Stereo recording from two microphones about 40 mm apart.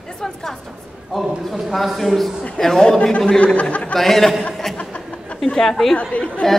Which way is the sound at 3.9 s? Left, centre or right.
Centre.